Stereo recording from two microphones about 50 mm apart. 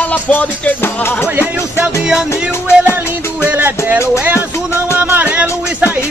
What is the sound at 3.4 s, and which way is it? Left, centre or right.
Music, right.